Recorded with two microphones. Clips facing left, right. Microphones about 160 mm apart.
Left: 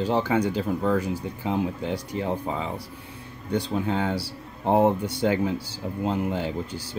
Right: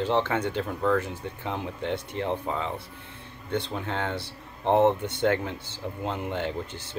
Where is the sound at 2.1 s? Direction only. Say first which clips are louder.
Left 1 dB; 5° left (ahead or behind).